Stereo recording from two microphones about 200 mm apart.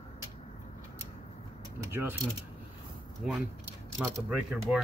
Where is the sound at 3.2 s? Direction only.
Centre (ahead or behind).